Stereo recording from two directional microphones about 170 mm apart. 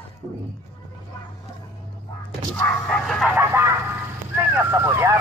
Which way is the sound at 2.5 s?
5° left (ahead or behind).